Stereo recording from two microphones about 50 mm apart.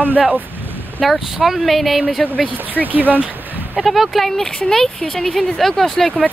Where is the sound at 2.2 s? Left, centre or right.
Left.